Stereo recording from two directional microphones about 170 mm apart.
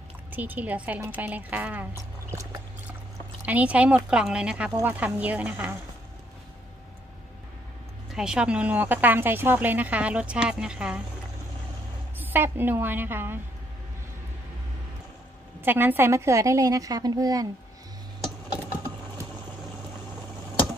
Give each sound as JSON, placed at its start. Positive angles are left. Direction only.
{"t": 0.3, "sound": "speech", "side_deg": -10}
{"t": 3.4, "sound": "speech", "side_deg": -10}
{"t": 8.1, "sound": "speech", "side_deg": -5}
{"t": 12.2, "sound": "speech", "side_deg": -10}
{"t": 15.6, "sound": "speech", "side_deg": -10}